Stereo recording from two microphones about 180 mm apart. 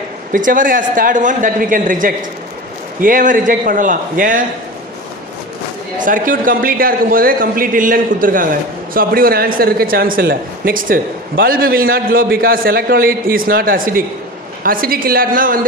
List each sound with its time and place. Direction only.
0.3 s a man's voice: 50° right (ahead or behind)
5.9 s a man's voice: 50° right (ahead or behind)